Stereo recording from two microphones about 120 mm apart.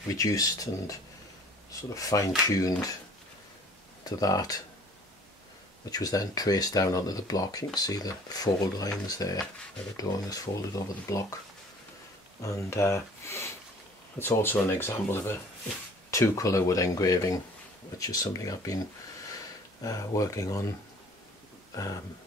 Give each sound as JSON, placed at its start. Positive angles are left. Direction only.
{"t": 0.1, "sound": "speech", "side_deg": 30}
{"t": 4.0, "sound": "speech", "side_deg": 30}
{"t": 5.9, "sound": "speech", "side_deg": 30}
{"t": 12.4, "sound": "speech", "side_deg": 25}
{"t": 19.8, "sound": "speech", "side_deg": 30}